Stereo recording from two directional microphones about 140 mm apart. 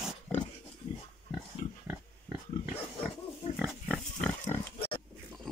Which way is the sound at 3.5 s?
10° right (ahead or behind).